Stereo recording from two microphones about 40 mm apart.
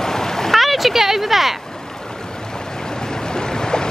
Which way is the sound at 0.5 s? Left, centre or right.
Centre.